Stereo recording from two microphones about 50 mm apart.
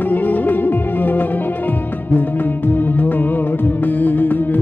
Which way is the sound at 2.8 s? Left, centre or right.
Left.